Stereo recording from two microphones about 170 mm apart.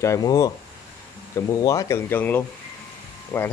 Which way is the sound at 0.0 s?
20° left (ahead or behind).